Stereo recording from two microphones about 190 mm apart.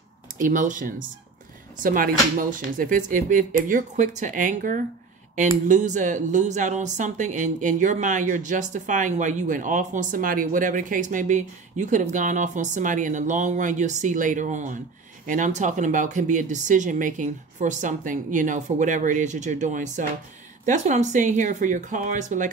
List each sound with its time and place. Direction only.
0.4 s speech: 45° right (ahead or behind)